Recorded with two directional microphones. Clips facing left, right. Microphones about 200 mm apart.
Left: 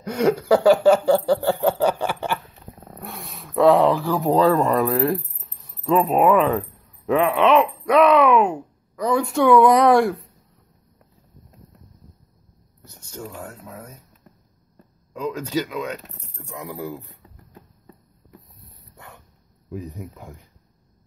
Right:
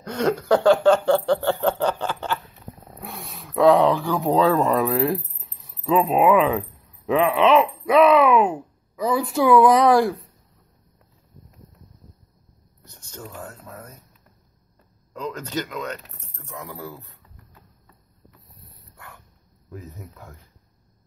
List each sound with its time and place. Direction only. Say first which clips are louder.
0.0 s chuckle: left 3 dB; 10° left (ahead or behind)
2.8 s speech: left 2 dB; centre (ahead or behind)
13.3 s speech: left 1 dB; 10° left (ahead or behind)
15.1 s speech: left 4 dB; 10° left (ahead or behind)
18.2 s boat: left 6 dB; 15° right (ahead or behind)
18.9 s dog: left 1 dB; 20° left (ahead or behind)
19.7 s speech: left 6 dB; 15° left (ahead or behind)